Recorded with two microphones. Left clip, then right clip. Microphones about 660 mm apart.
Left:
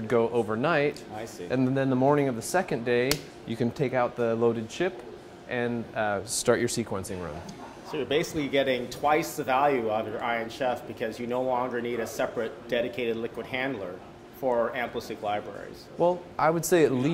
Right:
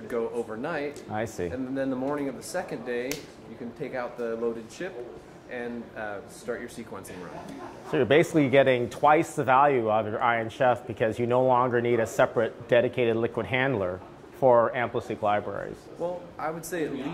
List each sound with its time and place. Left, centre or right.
0.1 s speech: left
1.1 s speech: right
1.5 s speech: left
7.9 s speech: right
16.0 s speech: left